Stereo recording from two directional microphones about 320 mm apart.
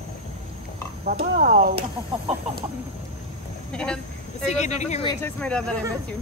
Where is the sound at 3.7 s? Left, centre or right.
Centre.